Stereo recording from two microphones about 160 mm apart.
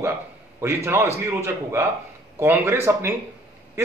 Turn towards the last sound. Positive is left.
turn(degrees=-15)  # may be behind; listen again after turning